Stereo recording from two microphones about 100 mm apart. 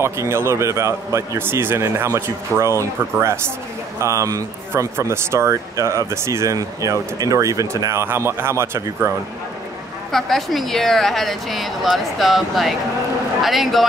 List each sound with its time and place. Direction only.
0.0 s speech: 25° right (ahead or behind)
10.1 s a woman's voice: centre (ahead or behind)